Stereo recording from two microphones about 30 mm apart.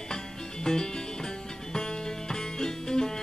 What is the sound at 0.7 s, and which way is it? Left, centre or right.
Music, left.